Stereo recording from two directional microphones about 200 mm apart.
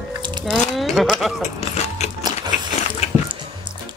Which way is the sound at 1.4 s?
35° left (ahead or behind).